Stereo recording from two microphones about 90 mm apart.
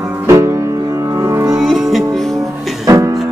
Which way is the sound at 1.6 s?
Centre (ahead or behind).